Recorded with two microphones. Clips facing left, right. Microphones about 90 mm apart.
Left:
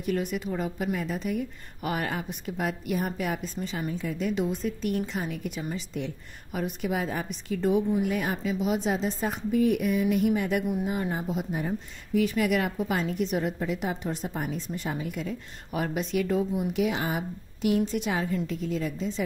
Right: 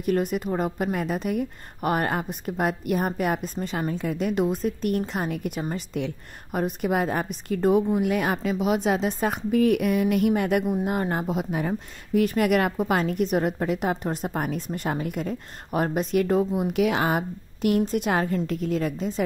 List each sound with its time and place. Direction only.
0.0 s a woman's voice: 50° right (ahead or behind)